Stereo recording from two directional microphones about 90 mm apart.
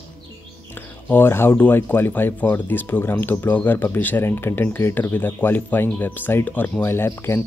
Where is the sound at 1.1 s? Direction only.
25° left (ahead or behind).